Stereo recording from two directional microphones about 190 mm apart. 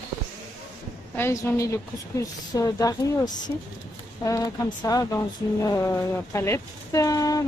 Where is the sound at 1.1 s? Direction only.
15° left (ahead or behind).